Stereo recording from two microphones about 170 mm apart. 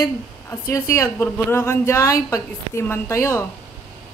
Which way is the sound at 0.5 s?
20° left (ahead or behind).